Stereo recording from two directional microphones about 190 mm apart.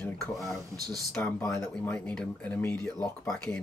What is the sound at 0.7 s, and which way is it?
Speech, 20° right (ahead or behind).